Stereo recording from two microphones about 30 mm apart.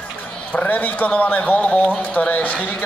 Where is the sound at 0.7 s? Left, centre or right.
Left.